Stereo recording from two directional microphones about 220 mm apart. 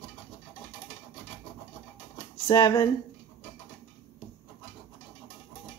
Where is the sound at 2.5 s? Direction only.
20° left (ahead or behind).